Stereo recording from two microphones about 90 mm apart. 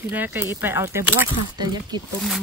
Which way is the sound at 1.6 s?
50° right (ahead or behind).